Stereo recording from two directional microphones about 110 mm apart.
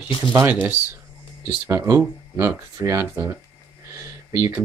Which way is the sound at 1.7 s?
30° right (ahead or behind).